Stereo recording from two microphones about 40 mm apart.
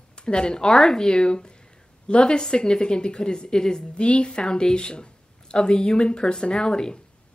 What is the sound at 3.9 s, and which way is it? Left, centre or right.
A woman's voice, left.